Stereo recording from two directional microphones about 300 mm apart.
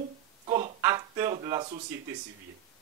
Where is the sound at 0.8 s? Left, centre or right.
Centre.